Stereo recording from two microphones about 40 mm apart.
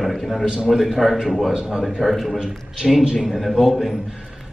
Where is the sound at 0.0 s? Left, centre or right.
Centre.